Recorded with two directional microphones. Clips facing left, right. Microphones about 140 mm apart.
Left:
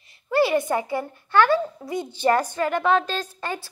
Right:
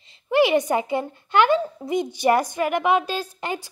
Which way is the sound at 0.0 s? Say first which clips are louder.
Right 2 dB; 20° right (ahead or behind).